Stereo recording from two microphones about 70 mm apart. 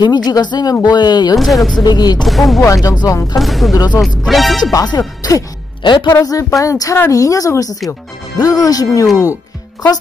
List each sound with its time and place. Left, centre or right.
0.0 s speech: left
1.4 s speech: centre
1.8 s speech: left
2.2 s speech: centre
2.6 s speech: left
3.3 s speech: centre
3.7 s speech: left
4.3 s speech: centre
4.8 s speech: left
5.9 s speech: left
6.6 s speech: left